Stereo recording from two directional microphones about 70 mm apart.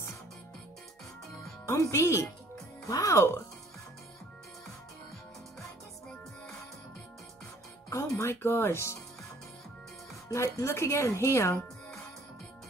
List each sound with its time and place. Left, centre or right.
1.7 s speech: left
8.2 s speech: left
10.3 s speech: left